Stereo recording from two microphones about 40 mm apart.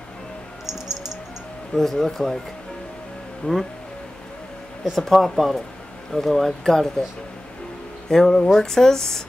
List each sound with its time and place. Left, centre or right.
1.8 s speech: centre
3.4 s speech: left
4.9 s speech: centre
8.1 s speech: centre